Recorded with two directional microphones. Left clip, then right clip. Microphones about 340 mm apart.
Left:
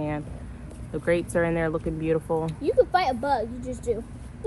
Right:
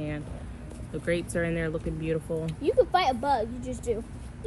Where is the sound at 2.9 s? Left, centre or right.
Centre.